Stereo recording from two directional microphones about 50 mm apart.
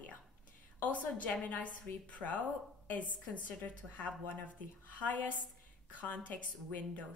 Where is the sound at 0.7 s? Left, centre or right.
Left.